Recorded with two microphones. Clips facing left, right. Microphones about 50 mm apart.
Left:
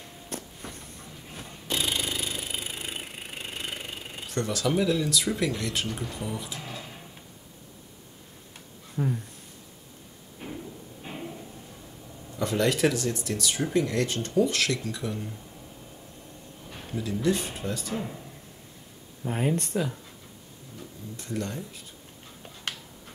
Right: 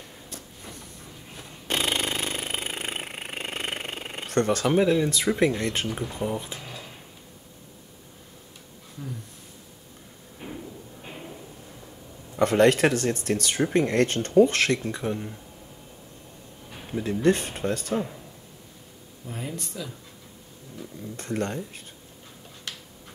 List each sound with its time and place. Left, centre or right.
0.3 s vehicle: left
1.7 s a sound: right
6.1 s speech: right
6.6 s a sound: centre
9.0 s speech: left
10.4 s a sound: centre
12.4 s speech: right
17.0 s speech: right
19.2 s speech: left
21.2 s speech: right